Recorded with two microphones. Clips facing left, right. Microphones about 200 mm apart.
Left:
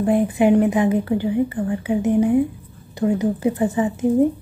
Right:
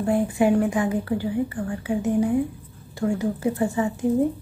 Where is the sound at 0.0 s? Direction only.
20° left (ahead or behind).